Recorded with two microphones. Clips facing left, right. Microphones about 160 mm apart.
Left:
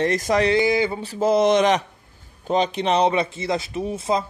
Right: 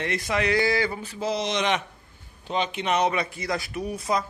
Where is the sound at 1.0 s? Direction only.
45° left (ahead or behind); by 4.3 s 25° left (ahead or behind).